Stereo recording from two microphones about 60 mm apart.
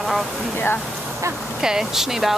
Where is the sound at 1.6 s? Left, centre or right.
Centre.